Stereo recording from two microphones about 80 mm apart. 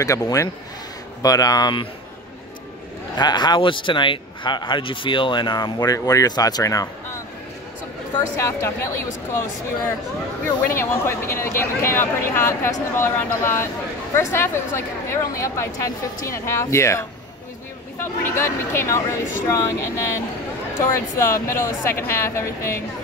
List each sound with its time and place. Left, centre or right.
0.0 s speech: left
3.2 s speech: left
5.9 s speech: left
8.4 s speech: left
10.6 s speech: left
18.0 s speech: left
20.8 s speech: left